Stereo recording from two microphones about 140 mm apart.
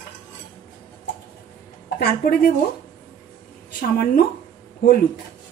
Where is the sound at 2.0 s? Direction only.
90° left.